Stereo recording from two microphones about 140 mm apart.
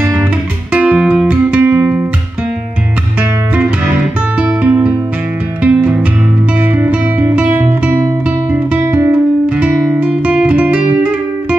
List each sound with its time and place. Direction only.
0.7 s music: 10° right (ahead or behind)
3.2 s music: 10° right (ahead or behind)
8.5 s guitar: 20° right (ahead or behind)
10.2 s guitar: 10° right (ahead or behind)